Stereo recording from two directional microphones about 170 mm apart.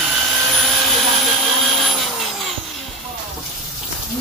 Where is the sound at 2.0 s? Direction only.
Centre (ahead or behind).